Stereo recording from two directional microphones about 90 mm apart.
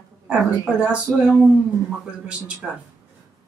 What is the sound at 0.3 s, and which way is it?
Speech, 10° right (ahead or behind).